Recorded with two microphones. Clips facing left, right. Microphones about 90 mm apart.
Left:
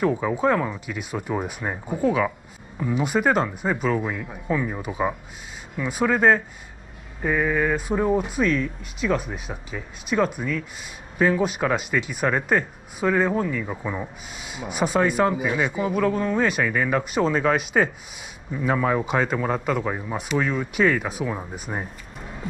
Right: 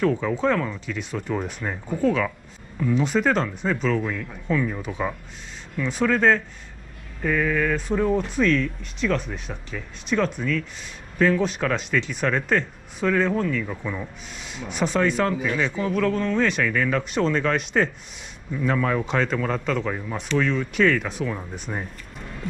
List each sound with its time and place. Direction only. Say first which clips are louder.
0.0 s a man's voice: even; 10° left (ahead or behind)
14.4 s a man's voice: left 1 dB; 5° left (ahead or behind)